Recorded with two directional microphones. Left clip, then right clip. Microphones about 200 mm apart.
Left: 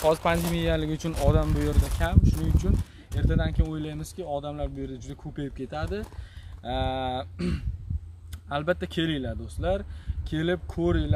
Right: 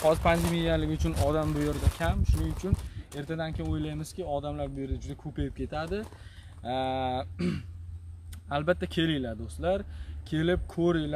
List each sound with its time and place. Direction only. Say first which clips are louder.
0.0 s speech: left 1 dB; 30° left (ahead or behind)
1.1 s speech: left 2 dB; 10° left (ahead or behind)